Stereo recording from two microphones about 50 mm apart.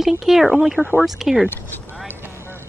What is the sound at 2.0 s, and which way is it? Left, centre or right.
Vehicle, right.